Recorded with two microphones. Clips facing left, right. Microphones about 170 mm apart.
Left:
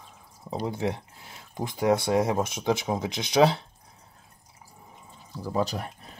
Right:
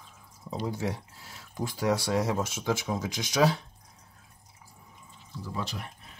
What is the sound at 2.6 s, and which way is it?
Speech, 20° left (ahead or behind).